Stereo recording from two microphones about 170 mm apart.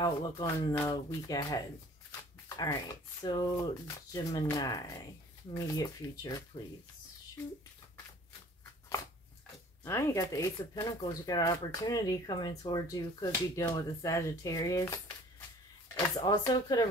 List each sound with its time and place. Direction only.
0.0 s speech: 25° left (ahead or behind)
9.8 s speech: 20° left (ahead or behind)
16.0 s speech: 25° left (ahead or behind)